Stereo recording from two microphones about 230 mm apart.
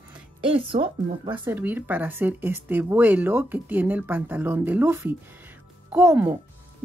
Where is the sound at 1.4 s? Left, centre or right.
Centre.